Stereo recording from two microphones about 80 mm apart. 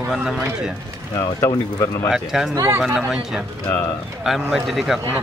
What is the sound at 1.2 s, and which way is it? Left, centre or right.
Speech, left.